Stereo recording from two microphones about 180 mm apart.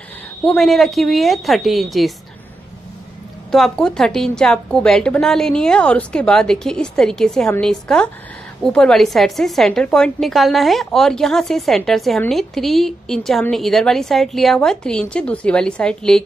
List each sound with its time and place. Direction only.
0.4 s a woman's voice: 5° left (ahead or behind)
3.5 s a woman's voice: centre (ahead or behind)